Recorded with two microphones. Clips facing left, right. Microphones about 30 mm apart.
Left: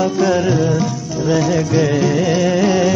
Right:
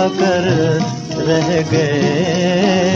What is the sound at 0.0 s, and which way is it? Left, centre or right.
Music, right.